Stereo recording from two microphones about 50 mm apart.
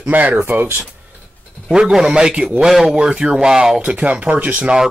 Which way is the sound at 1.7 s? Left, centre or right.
Centre.